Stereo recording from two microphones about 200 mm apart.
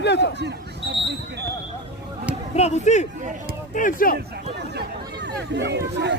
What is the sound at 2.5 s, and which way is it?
Speech, 35° left (ahead or behind).